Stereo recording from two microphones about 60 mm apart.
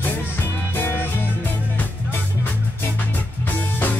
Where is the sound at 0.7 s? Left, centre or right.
Left.